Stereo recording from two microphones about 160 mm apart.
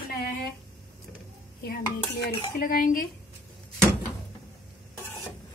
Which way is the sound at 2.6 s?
65° left (ahead or behind).